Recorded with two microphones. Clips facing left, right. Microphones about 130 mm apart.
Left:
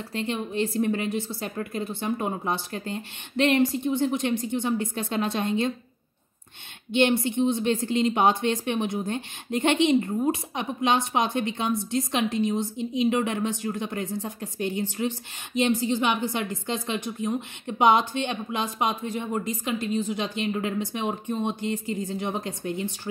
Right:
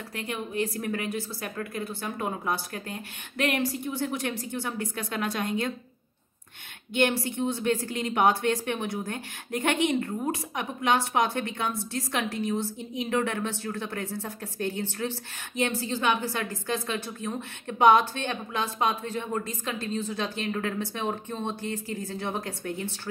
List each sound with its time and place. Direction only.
0.1 s a woman's voice: 25° left (ahead or behind)
6.9 s a woman's voice: 20° left (ahead or behind)